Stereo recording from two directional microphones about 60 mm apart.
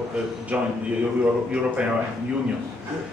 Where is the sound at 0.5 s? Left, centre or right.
Centre.